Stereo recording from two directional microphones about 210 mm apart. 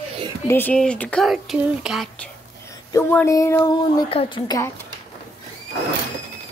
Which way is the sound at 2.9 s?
15° left (ahead or behind).